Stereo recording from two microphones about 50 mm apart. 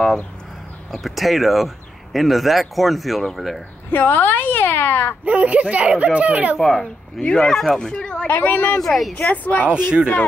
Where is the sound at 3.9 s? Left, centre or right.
Left.